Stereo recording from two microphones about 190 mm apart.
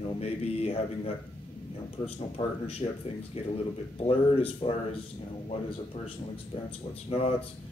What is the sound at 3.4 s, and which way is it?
A man's voice, 30° left (ahead or behind).